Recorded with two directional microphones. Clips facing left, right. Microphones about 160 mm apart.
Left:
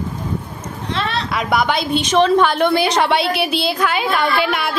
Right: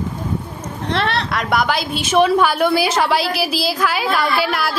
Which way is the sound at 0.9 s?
65° right (ahead or behind).